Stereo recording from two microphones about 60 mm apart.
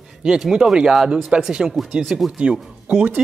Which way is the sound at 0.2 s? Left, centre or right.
Centre.